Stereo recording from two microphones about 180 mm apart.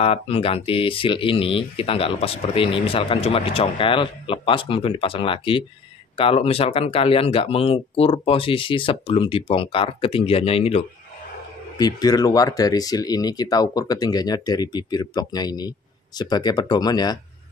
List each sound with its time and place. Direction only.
0.0 s speech: 35° left (ahead or behind)
11.8 s speech: 20° left (ahead or behind)